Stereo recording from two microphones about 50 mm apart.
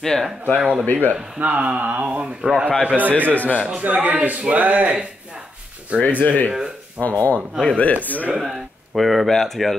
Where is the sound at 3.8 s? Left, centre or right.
Right.